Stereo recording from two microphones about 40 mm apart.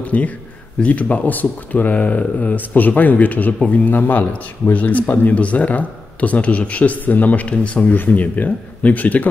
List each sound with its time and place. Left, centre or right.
0.0 s speech: left
3.9 s speech: left
7.8 s speech: left